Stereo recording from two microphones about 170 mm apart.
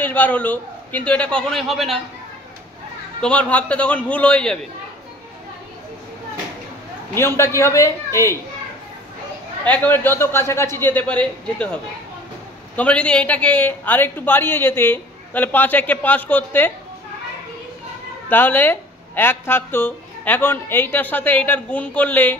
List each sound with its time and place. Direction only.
0.0 s a man's voice: 10° left (ahead or behind)
3.2 s a man's voice: 5° left (ahead or behind)
7.2 s a man's voice: 15° left (ahead or behind)
9.7 s a man's voice: 10° left (ahead or behind)
18.3 s a man's voice: 10° left (ahead or behind)